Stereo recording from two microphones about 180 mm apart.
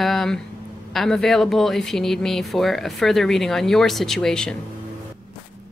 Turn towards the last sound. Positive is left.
turn(degrees=5)  # may be behind; listen again after turning